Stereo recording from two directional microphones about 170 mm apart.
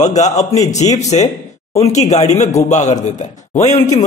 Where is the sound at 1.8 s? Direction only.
40° left (ahead or behind).